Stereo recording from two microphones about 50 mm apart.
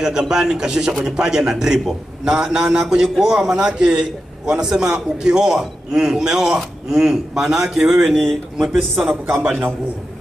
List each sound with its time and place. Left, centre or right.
0.0 s speech: centre
8.1 s speech: centre
8.5 s speech: centre
9.1 s speech: right